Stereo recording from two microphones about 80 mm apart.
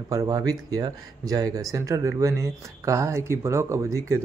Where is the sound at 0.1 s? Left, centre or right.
Right.